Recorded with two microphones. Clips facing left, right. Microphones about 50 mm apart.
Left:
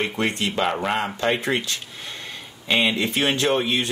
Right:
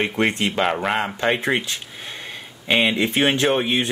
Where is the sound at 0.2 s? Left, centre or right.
Right.